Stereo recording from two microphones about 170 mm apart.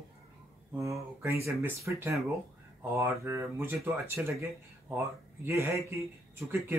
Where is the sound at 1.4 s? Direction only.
15° right (ahead or behind).